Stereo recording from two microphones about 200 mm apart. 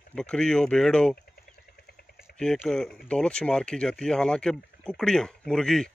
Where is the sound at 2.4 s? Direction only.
Centre (ahead or behind).